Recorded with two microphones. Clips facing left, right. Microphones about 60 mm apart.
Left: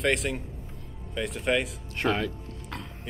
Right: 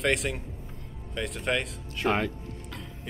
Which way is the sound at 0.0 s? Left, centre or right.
Centre.